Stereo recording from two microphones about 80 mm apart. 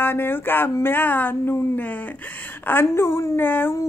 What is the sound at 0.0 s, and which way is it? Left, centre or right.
A woman's voice, left.